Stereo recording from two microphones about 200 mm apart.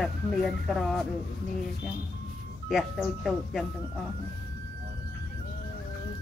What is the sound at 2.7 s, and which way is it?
Speech, centre (ahead or behind).